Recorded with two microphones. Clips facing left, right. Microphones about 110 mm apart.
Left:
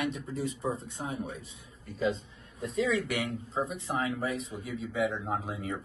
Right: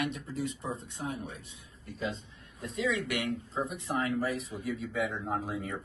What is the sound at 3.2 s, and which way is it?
Speech, 30° left (ahead or behind).